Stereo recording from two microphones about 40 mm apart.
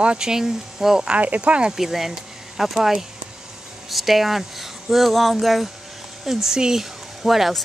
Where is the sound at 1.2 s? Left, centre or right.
Right.